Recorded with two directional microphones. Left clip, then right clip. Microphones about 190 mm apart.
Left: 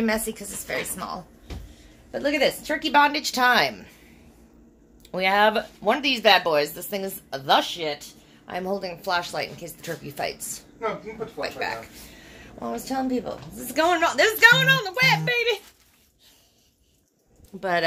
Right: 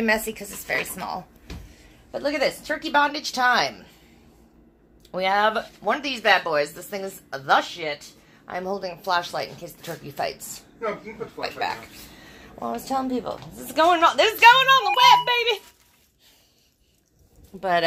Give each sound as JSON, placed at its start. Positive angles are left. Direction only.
{"t": 0.7, "sound": "a woman's voice", "side_deg": 10}
{"t": 2.1, "sound": "speech", "side_deg": 20}
{"t": 5.1, "sound": "a woman's voice", "side_deg": 25}
{"t": 11.6, "sound": "a woman's voice", "side_deg": 10}
{"t": 17.6, "sound": "a woman's voice", "side_deg": 10}